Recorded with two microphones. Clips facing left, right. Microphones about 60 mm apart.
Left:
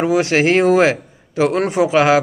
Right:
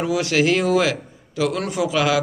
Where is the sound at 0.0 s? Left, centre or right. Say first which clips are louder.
Left 4 dB; left.